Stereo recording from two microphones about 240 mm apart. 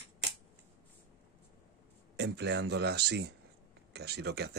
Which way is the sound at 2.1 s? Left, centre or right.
Right.